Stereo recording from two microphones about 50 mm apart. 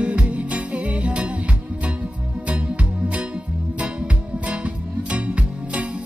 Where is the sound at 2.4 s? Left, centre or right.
Right.